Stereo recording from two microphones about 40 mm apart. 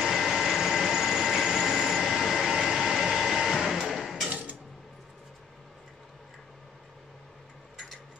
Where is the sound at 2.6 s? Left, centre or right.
Centre.